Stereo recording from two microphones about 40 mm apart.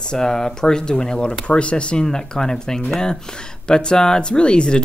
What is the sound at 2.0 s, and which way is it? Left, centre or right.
Speech, centre.